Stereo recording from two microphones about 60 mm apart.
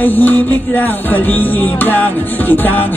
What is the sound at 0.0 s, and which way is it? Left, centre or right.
Music, left.